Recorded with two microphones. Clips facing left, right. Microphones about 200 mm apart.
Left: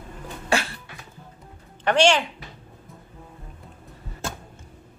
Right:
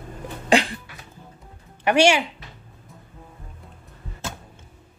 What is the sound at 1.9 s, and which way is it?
Speech, 10° right (ahead or behind).